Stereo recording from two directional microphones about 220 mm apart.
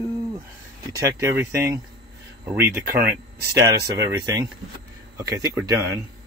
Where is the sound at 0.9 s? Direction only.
15° right (ahead or behind).